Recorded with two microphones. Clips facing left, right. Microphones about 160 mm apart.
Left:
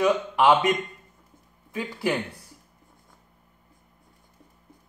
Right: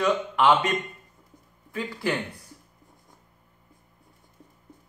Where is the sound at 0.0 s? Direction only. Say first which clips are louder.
Left 2 dB; 10° left (ahead or behind).